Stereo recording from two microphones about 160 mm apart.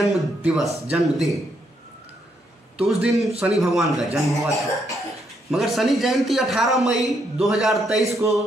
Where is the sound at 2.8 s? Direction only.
5° right (ahead or behind).